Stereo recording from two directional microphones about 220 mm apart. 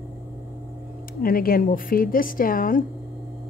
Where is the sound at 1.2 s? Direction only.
40° left (ahead or behind).